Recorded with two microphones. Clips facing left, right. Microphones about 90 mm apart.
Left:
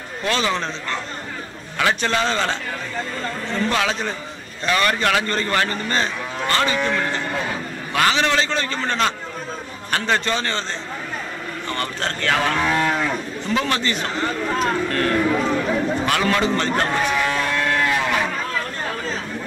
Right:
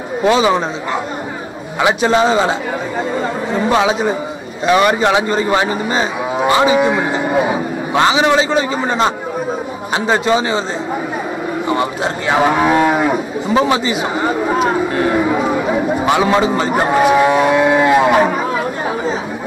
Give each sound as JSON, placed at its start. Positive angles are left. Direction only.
{"t": 0.2, "sound": "speech", "side_deg": -15}
{"t": 1.8, "sound": "speech", "side_deg": -15}
{"t": 3.2, "sound": "chatter", "side_deg": -10}
{"t": 3.7, "sound": "speech", "side_deg": -15}
{"t": 11.7, "sound": "speech", "side_deg": -10}